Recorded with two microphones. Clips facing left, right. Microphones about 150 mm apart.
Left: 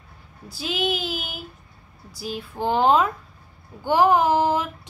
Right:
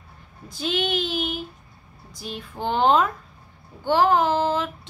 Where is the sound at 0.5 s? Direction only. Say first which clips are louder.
Even; 5° left (ahead or behind).